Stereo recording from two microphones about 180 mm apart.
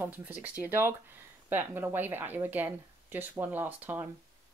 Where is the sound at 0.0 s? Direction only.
10° right (ahead or behind).